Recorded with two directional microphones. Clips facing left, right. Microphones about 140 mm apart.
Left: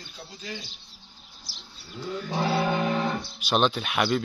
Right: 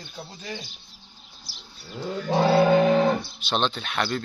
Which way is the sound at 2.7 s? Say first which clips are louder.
Right 8 dB; 80° right.